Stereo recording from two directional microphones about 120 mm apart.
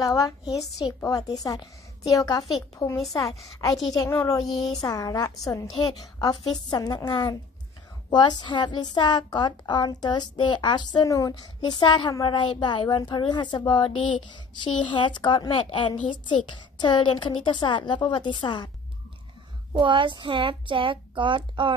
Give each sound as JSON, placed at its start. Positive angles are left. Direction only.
{"t": 0.0, "sound": "a woman's voice", "side_deg": 30}
{"t": 3.3, "sound": "speech", "side_deg": 0}
{"t": 3.9, "sound": "a woman's voice", "side_deg": 25}
{"t": 4.5, "sound": "speech", "side_deg": 0}
{"t": 4.8, "sound": "a woman's voice", "side_deg": 35}
{"t": 11.0, "sound": "a woman's voice", "side_deg": 30}
{"t": 19.7, "sound": "speech", "side_deg": -45}